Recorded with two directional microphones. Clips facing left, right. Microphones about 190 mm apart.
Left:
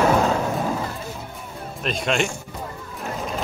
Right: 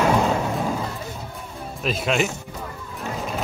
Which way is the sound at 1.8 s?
5° right (ahead or behind).